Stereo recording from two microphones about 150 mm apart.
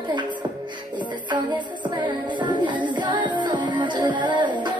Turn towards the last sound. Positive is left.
turn(degrees=-30)  # may be behind; listen again after turning